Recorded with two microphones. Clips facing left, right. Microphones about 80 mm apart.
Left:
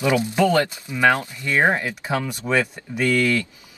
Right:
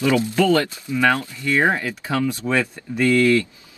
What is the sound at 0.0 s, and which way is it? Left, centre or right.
Speech, centre.